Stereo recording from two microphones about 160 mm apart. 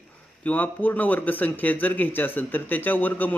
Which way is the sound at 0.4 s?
10° left (ahead or behind).